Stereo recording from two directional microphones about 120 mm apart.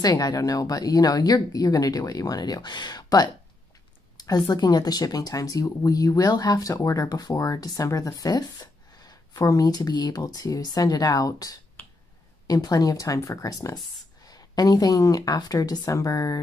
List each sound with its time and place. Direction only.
0.0 s speech: 30° left (ahead or behind)
4.5 s speech: 35° left (ahead or behind)